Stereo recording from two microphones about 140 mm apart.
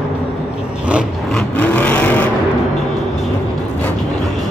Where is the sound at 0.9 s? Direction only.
5° right (ahead or behind).